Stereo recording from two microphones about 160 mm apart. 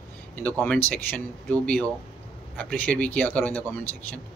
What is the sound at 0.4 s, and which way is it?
Speech, 10° left (ahead or behind).